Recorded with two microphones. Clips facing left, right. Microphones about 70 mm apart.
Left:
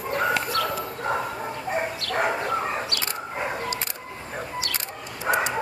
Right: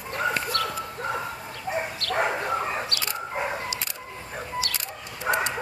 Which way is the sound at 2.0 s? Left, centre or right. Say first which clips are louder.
Even; right.